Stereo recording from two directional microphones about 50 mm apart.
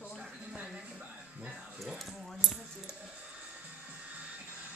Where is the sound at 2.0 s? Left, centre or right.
Centre.